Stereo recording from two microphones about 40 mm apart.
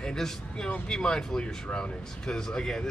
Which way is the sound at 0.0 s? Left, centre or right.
Centre.